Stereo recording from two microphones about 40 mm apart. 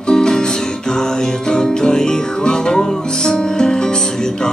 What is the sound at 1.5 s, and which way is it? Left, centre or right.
Music, centre.